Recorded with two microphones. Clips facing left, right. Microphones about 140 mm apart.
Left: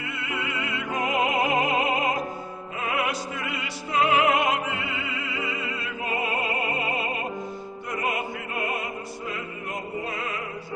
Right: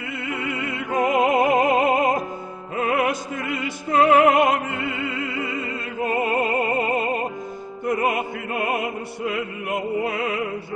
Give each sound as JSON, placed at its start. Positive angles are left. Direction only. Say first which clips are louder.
{"t": 0.2, "sound": "music", "louder": "right 4 dB", "side_deg": -55}
{"t": 6.4, "sound": "opera", "louder": "right 6 dB", "side_deg": -45}
{"t": 7.8, "sound": "music", "louder": "right 7 dB", "side_deg": -55}